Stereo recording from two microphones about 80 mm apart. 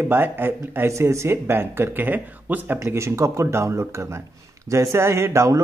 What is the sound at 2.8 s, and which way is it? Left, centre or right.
Speech, right.